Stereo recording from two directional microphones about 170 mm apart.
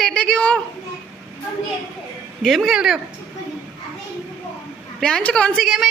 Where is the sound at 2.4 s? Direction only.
Centre (ahead or behind).